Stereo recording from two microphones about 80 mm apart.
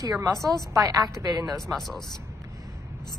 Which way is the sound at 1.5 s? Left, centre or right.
Centre.